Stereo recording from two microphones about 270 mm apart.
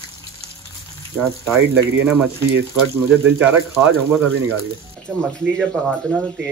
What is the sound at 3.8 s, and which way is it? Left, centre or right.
Speech, centre.